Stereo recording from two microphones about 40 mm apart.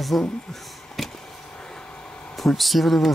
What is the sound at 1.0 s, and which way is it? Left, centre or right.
Vehicle, centre.